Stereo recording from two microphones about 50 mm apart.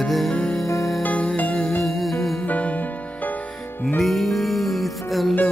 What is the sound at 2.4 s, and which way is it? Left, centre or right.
Music, left.